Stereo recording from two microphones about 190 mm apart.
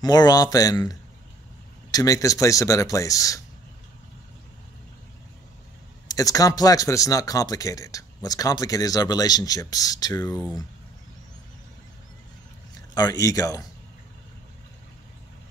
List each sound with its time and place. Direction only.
0.0 s speech: 20° left (ahead or behind)
6.0 s speech: 20° left (ahead or behind)
12.7 s speech: 20° left (ahead or behind)